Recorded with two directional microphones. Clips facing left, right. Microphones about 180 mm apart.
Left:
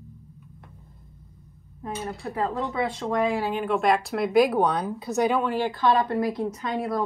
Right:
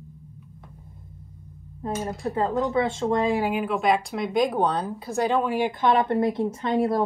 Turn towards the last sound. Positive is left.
turn(degrees=-25)  # may be behind; listen again after turning